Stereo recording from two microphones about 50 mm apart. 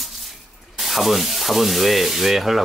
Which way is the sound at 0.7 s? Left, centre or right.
Centre.